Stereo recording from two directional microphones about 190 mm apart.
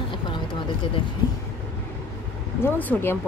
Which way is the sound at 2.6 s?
10° left (ahead or behind).